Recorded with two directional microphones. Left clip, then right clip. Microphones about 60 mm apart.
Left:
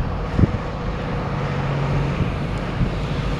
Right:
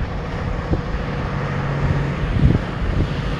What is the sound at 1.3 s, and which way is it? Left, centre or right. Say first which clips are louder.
Vehicle: even; right.